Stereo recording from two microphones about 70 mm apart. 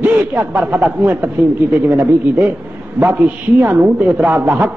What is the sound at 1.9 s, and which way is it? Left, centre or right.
A man's voice, right.